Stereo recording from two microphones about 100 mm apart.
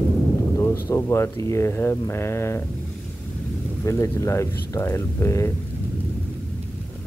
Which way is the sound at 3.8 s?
30° left (ahead or behind).